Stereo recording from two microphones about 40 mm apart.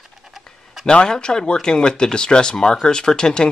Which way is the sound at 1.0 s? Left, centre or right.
Centre.